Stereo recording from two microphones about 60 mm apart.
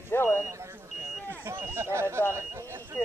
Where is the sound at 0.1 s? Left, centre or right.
Left.